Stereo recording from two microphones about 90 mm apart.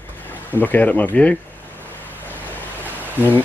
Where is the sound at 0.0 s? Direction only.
20° left (ahead or behind).